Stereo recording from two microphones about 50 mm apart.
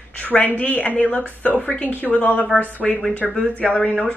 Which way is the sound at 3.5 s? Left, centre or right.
Left.